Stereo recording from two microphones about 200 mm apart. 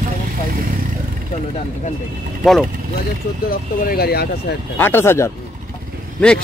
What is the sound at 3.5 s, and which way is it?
Speech, 50° left (ahead or behind).